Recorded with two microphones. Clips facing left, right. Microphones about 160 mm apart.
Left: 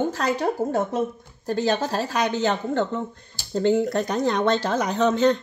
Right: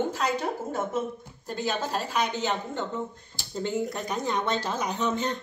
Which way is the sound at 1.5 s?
90° left.